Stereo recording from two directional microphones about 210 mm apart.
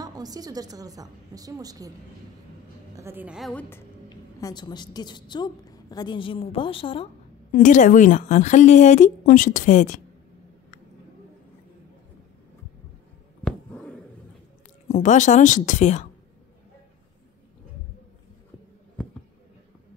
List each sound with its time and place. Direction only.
0.0 s a woman's voice: 20° right (ahead or behind)
3.0 s a woman's voice: 10° right (ahead or behind)
3.7 s a woman's voice: 15° left (ahead or behind)
7.5 s a woman's voice: 35° left (ahead or behind)
13.4 s a sound: centre (ahead or behind)
14.9 s a woman's voice: 35° left (ahead or behind)